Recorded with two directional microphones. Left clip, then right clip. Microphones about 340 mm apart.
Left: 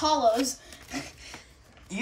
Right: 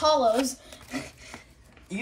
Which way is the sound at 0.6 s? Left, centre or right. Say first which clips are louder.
Right 1 dB; centre.